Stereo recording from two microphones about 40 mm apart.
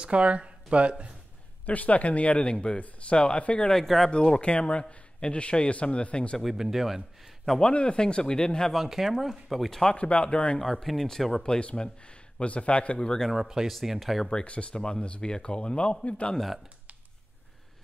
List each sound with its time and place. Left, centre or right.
0.0 s speech: right
1.7 s a man's voice: left
3.7 s speech: centre
4.1 s a man's voice: left
6.4 s speech: centre
7.6 s a man's voice: left
8.7 s speech: centre
9.8 s a man's voice: left
10.6 s speech: centre
11.4 s a man's voice: left
13.3 s speech: centre
14.4 s a man's voice: left
16.3 s speech: centre